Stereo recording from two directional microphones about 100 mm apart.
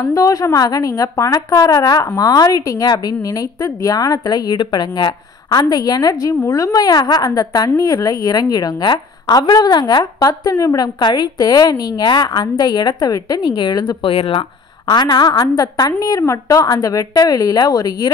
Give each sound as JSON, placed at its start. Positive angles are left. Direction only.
{"t": 0.0, "sound": "a woman's voice", "side_deg": 35}
{"t": 14.9, "sound": "a woman's voice", "side_deg": 45}